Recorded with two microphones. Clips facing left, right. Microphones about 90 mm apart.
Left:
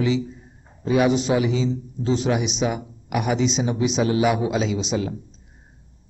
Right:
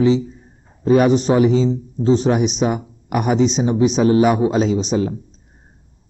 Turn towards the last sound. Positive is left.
turn(degrees=-40)  # may be behind; listen again after turning